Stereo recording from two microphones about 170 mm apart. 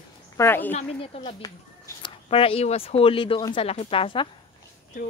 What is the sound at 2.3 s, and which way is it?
Speech, 35° left (ahead or behind).